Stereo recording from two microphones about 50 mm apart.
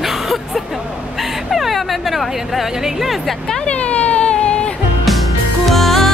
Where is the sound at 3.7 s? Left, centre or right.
Left.